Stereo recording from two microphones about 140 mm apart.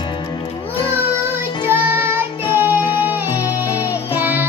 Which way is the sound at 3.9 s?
15° right (ahead or behind).